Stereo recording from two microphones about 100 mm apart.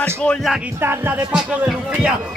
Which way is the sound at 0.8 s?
20° right (ahead or behind).